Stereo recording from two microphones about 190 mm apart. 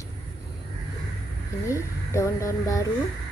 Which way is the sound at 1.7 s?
15° left (ahead or behind).